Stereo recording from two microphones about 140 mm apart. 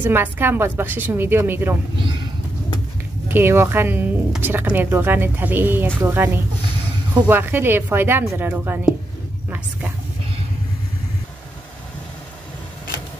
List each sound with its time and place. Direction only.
0.0 s a woman's voice: 15° right (ahead or behind)
3.3 s a woman's voice: 15° right (ahead or behind)
9.5 s a sound: 15° right (ahead or behind)